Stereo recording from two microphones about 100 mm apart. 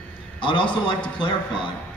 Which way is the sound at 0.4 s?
55° left (ahead or behind).